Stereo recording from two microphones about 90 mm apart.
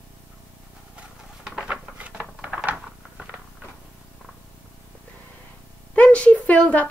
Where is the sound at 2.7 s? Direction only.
15° right (ahead or behind).